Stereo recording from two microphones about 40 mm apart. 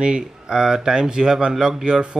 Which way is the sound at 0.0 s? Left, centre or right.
Centre.